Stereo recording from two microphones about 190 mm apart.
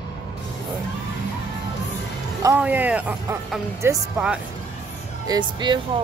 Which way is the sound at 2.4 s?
15° right (ahead or behind).